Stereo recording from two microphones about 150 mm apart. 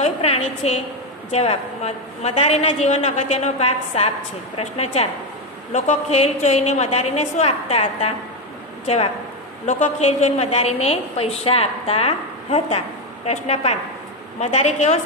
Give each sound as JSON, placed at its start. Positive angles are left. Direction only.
{"t": 0.0, "sound": "a woman's voice", "side_deg": 45}